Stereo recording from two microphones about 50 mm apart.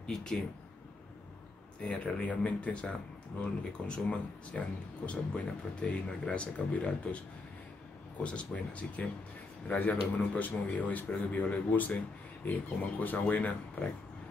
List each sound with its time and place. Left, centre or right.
0.0 s speech: centre
1.8 s speech: left
8.2 s speech: left
13.0 s speech: left